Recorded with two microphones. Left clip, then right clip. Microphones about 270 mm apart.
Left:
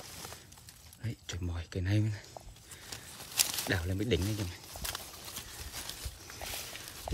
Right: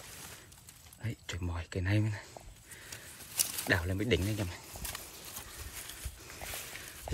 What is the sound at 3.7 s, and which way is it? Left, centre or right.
Speech, centre.